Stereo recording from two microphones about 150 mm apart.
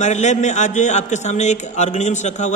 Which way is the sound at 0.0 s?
50° left (ahead or behind).